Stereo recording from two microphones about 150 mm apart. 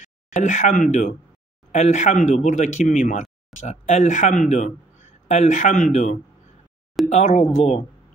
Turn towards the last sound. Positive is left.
turn(degrees=50)  # may be behind; listen again after turning